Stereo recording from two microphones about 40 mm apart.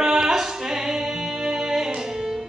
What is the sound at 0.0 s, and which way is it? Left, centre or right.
Music, centre.